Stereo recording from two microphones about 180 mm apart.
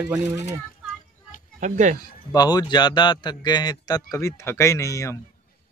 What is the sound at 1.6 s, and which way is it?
Speech, 45° right (ahead or behind).